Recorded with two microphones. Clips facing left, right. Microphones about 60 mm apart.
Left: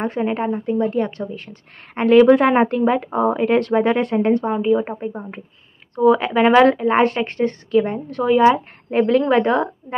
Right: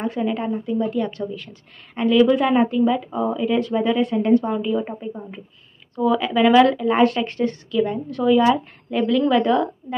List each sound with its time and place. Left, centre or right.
0.0 s a woman's voice: left
4.2 s speech: left
5.0 s a woman's voice: left
5.9 s speech: left